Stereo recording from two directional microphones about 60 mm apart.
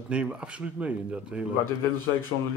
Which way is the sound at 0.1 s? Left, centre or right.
Centre.